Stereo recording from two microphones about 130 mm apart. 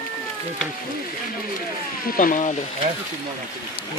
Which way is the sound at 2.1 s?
90° left.